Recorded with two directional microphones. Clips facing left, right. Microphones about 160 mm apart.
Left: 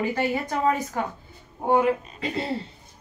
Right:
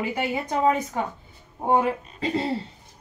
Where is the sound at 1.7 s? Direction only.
35° right (ahead or behind).